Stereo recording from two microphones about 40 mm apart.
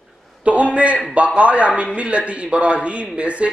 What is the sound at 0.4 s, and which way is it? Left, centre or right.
A man's voice, right.